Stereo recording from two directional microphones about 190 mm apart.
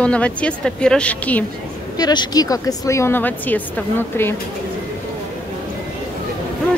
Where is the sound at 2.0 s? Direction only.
20° left (ahead or behind).